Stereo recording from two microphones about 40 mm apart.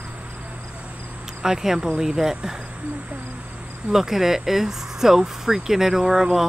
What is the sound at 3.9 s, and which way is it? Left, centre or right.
Speech, centre.